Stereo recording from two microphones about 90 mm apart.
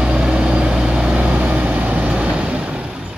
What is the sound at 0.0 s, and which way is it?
Vehicle, 10° right (ahead or behind).